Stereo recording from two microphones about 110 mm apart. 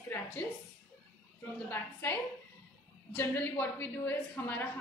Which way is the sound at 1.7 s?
20° left (ahead or behind).